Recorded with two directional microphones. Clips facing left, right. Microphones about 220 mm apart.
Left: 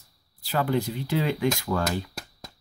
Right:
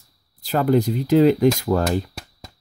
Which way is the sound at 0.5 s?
40° right (ahead or behind).